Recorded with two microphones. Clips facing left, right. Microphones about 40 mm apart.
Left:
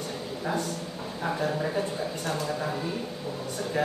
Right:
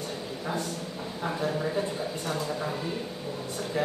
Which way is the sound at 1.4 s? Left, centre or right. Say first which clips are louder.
Even; centre.